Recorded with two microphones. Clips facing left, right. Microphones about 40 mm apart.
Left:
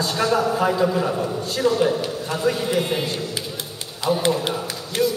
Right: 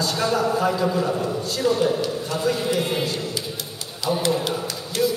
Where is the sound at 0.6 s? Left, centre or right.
Centre.